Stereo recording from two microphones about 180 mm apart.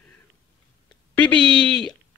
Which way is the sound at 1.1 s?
5° left (ahead or behind).